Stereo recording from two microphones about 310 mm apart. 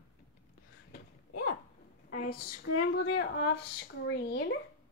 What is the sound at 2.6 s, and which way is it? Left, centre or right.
Speech, left.